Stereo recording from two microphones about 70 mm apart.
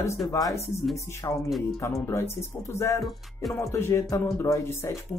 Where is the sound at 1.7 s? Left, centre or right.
Left.